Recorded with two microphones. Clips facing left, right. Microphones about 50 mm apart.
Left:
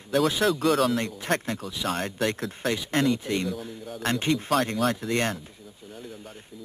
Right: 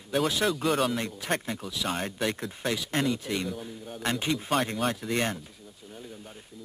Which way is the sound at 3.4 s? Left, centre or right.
Centre.